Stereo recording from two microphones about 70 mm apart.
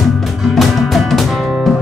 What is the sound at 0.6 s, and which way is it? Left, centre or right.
Music, centre.